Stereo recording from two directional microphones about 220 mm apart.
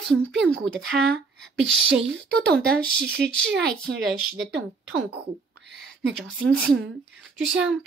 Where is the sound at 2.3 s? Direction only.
45° right (ahead or behind).